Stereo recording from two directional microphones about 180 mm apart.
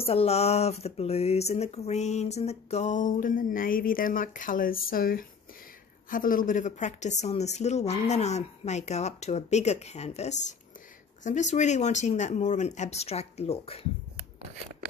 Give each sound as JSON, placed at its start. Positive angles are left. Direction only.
{"t": 0.0, "sound": "speech", "side_deg": 35}